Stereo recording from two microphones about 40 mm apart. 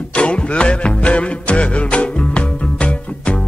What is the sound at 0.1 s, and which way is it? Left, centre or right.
Music, left.